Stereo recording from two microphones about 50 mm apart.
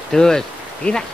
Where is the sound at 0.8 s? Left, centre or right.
Left.